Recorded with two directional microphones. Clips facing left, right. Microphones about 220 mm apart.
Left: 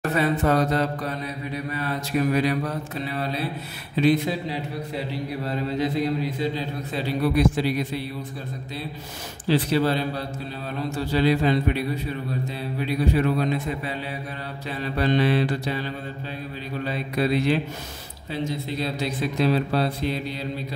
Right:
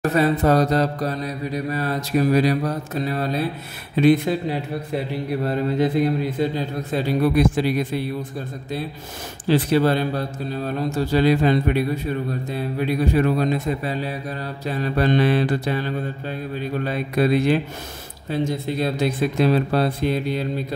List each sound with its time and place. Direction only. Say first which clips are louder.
0.1 s mantra: right 3 dB; 40° right (ahead or behind)
3.9 s speech: right 4 dB; 55° right (ahead or behind)
9.5 s speech: right 3 dB; 50° right (ahead or behind)
16.8 s speech: right 3 dB; 50° right (ahead or behind)